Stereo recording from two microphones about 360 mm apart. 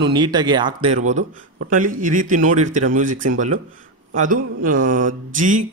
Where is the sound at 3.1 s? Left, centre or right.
Right.